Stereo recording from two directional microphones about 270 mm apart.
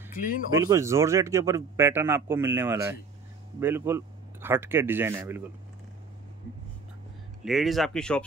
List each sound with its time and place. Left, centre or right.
0.1 s speech: left
0.5 s a man's voice: centre
7.4 s speech: centre